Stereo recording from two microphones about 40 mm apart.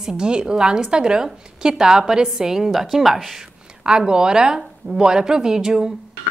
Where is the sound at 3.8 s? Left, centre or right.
Right.